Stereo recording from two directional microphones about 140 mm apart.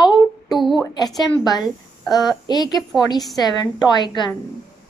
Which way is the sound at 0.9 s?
30° left (ahead or behind).